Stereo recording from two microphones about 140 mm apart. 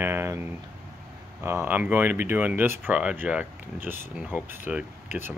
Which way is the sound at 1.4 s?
15° right (ahead or behind).